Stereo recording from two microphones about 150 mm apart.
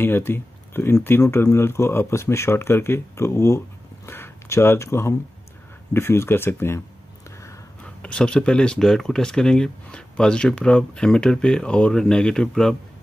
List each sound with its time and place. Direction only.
0.0 s speech: 15° left (ahead or behind)
8.0 s speech: 5° left (ahead or behind)